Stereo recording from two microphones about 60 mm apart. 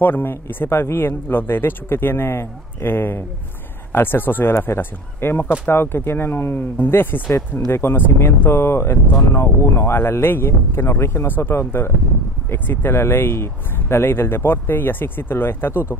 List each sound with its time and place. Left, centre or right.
0.0 s speech: left